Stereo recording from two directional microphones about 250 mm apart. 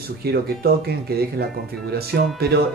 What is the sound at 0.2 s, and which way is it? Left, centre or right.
Speech, right.